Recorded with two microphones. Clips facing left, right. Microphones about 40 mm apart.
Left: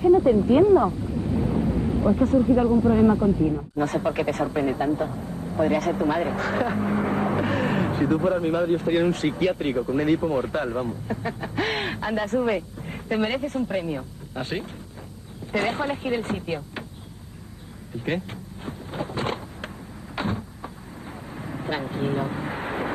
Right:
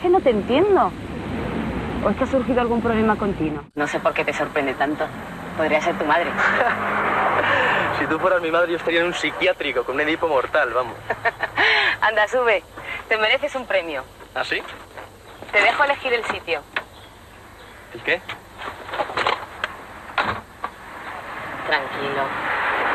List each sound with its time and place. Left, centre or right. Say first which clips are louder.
0.0 s speech: even; right
17.9 s a sound: right 5 dB; right
20.2 s vehicle: right 6 dB; right